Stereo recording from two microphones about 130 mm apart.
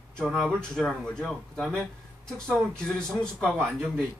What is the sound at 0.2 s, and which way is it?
Speech, 5° right (ahead or behind).